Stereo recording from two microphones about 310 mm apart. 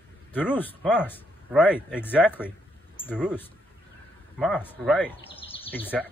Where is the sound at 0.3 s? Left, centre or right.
Centre.